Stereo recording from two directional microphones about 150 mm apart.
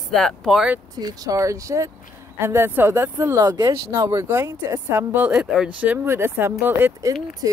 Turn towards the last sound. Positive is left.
turn(degrees=-25)  # may be behind; listen again after turning